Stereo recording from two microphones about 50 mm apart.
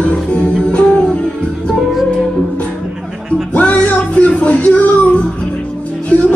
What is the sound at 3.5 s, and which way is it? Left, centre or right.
Music, left.